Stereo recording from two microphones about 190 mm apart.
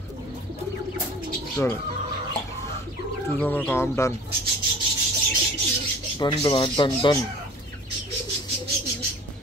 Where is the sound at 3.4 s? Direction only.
10° left (ahead or behind).